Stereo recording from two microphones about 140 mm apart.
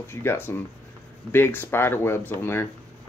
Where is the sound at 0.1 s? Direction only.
15° left (ahead or behind).